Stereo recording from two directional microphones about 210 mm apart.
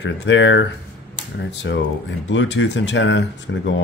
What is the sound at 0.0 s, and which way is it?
Speech, 60° left (ahead or behind).